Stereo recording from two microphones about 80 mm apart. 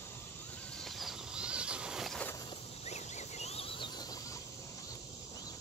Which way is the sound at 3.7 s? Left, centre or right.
Left.